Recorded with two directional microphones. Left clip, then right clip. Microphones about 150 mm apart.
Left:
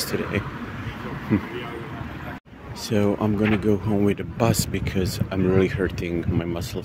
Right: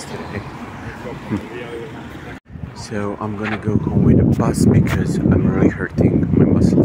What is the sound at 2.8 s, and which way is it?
Speech, 50° left (ahead or behind).